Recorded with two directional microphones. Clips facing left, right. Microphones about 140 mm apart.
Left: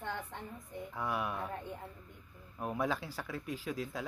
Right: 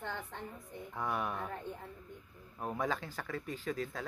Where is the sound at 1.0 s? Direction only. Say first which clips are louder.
Even; 5° left (ahead or behind).